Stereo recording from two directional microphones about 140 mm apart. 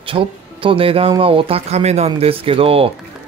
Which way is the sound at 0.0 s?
40° right (ahead or behind).